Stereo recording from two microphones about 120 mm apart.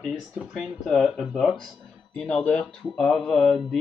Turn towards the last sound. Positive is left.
turn(degrees=5)  # may be behind; listen again after turning